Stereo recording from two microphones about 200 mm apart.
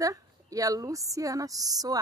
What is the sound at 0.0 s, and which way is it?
A woman's voice, 15° right (ahead or behind).